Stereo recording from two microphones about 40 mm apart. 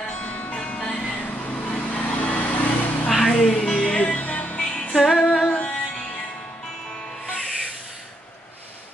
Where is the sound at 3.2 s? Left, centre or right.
Left.